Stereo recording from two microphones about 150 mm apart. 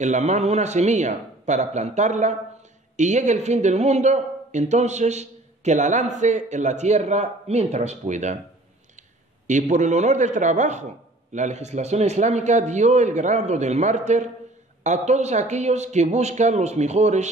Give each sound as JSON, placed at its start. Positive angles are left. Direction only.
{"t": 0.0, "sound": "speech", "side_deg": -50}
{"t": 9.5, "sound": "speech", "side_deg": -55}